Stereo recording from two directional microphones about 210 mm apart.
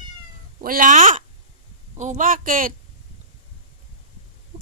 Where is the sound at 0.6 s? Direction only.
40° right (ahead or behind).